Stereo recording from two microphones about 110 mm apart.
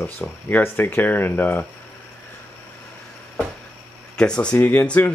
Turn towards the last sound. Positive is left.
turn(degrees=15)  # may be behind; listen again after turning